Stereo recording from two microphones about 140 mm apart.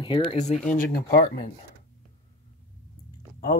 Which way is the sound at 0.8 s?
90° left.